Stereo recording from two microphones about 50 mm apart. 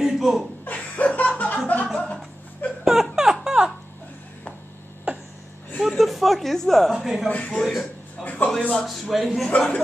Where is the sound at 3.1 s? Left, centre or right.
Centre.